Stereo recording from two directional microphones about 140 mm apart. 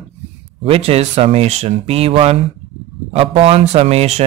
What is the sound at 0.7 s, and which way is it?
Speech, 45° right (ahead or behind).